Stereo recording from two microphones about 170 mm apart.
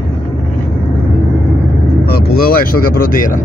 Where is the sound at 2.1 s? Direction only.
65° left (ahead or behind).